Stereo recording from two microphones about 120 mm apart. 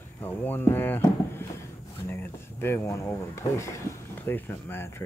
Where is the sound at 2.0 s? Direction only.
20° left (ahead or behind).